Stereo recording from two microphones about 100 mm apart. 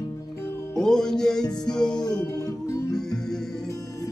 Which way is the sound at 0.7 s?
5° left (ahead or behind).